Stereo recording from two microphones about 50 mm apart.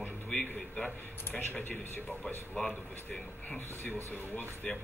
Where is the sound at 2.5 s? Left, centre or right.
Centre.